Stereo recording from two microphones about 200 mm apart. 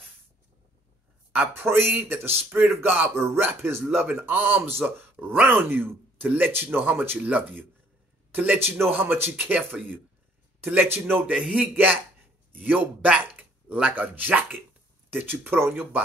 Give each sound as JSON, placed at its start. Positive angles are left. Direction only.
{"t": 1.3, "sound": "a man's voice", "side_deg": -10}